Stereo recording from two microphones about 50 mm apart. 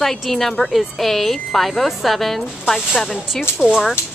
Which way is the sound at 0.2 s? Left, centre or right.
Centre.